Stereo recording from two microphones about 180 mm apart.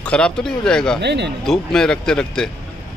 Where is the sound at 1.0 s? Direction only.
70° right (ahead or behind).